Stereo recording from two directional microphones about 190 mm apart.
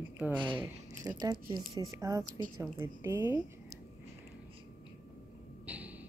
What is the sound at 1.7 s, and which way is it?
Speech, 15° right (ahead or behind).